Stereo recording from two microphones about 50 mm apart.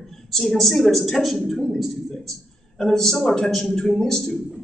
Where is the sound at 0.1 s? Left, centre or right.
Centre.